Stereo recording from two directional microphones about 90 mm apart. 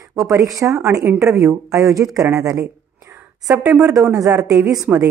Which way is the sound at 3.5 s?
15° right (ahead or behind).